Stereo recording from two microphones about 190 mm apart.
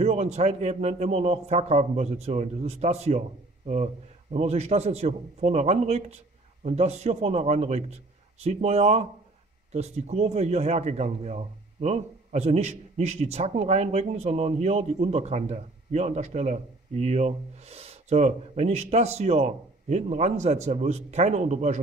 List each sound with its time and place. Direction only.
0.0 s speech: 35° right (ahead or behind)